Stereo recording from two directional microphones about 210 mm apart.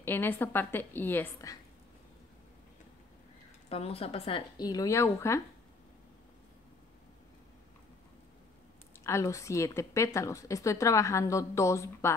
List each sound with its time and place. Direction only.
0.0 s a woman's voice: 10° left (ahead or behind)
3.6 s speech: 30° left (ahead or behind)
9.0 s a woman's voice: 15° left (ahead or behind)